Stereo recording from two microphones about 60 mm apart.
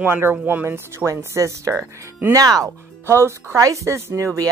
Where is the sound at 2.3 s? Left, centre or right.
Right.